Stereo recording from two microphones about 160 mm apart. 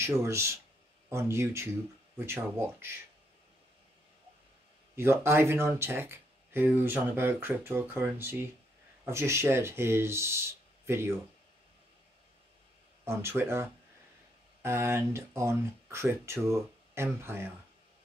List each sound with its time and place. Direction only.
0.2 s speech: 15° right (ahead or behind)
4.9 s speech: 15° right (ahead or behind)
13.0 s speech: 15° right (ahead or behind)